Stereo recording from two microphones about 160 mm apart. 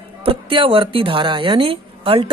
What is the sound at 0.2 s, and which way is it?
Speech, 35° right (ahead or behind).